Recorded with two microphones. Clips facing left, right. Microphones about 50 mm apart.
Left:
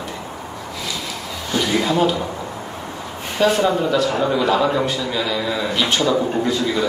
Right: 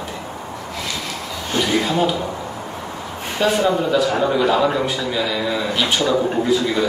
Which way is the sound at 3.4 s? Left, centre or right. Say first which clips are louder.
Left 1 dB; centre.